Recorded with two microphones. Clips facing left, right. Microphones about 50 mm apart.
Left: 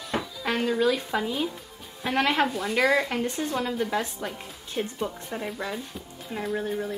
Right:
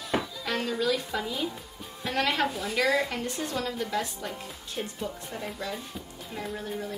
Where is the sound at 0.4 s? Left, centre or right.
Left.